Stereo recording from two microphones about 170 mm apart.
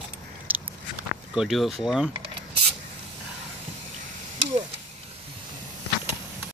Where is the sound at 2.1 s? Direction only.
30° right (ahead or behind).